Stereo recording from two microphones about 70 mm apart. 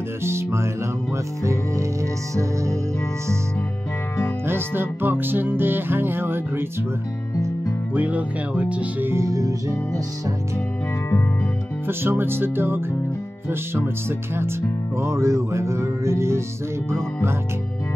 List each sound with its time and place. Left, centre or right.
0.2 s music: right
4.5 s music: right
7.9 s speech: right
9.0 s music: right
9.3 s music: right
11.9 s music: right